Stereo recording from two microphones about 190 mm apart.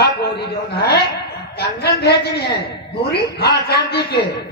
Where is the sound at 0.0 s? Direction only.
55° left (ahead or behind).